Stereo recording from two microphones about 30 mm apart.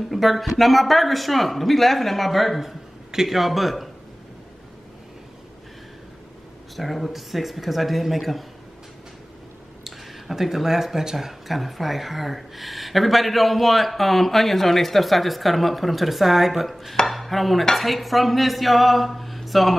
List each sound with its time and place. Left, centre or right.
0.1 s speech: centre
2.6 s a sound: centre
3.3 s speech: centre
6.8 s speech: centre
9.8 s speech: centre
17.0 s dishes: centre
17.7 s speech: centre